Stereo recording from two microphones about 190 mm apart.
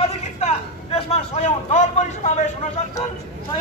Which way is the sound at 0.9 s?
30° left (ahead or behind).